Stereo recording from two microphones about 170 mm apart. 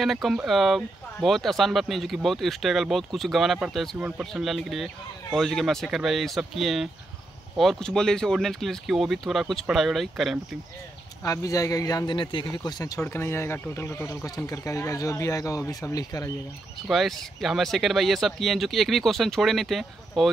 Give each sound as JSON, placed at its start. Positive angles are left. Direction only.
{"t": 0.0, "sound": "speech", "side_deg": 0}
{"t": 11.2, "sound": "a man's voice", "side_deg": 20}
{"t": 16.8, "sound": "speech", "side_deg": 0}